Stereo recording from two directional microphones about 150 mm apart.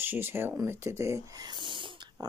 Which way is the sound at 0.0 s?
15° right (ahead or behind).